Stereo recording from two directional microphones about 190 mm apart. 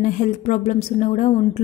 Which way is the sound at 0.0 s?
40° left (ahead or behind).